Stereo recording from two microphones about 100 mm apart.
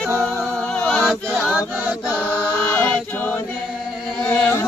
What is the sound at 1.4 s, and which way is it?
Chant, 15° right (ahead or behind).